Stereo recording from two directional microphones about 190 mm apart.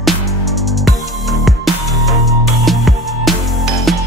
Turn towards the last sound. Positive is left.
turn(degrees=0)  # may be behind; listen again after turning